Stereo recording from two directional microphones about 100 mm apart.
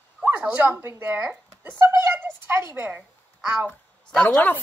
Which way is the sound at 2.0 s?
25° right (ahead or behind).